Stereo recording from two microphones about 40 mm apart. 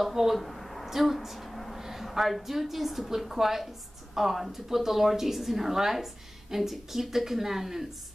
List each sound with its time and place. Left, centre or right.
0.0 s a woman's voice: centre
0.4 s a sound: centre
1.8 s a woman's voice: centre